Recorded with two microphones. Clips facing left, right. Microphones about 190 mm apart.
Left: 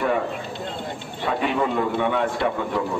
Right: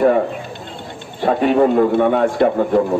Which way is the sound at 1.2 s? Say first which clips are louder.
Right 9 dB; 45° right (ahead or behind).